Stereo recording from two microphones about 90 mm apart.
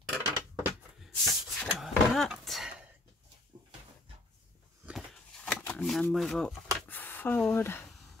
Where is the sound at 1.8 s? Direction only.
Centre (ahead or behind).